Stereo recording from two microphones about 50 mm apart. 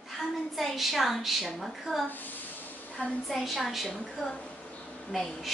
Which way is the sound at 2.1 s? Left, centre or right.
Left.